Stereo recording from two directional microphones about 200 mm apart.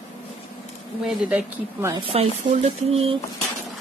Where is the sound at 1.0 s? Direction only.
5° right (ahead or behind).